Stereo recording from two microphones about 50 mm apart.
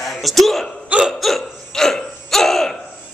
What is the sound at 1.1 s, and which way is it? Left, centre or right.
Hiccup, centre.